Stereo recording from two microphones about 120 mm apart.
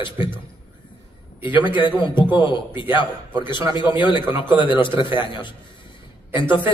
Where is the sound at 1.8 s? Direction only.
15° right (ahead or behind).